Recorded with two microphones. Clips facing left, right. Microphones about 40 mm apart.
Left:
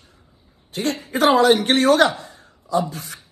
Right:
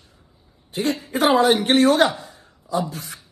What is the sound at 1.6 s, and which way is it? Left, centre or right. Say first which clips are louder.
Speech: even; left.